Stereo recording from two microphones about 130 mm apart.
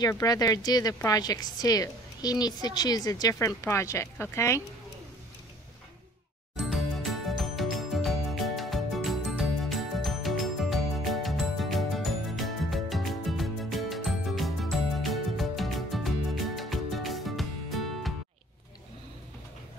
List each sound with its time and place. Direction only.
0.0 s a woman's voice: 30° left (ahead or behind)
6.6 s music: centre (ahead or behind)